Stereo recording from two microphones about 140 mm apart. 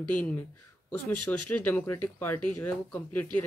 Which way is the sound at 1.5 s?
15° left (ahead or behind).